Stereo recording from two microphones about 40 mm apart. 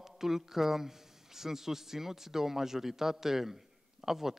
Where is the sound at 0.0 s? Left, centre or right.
Centre.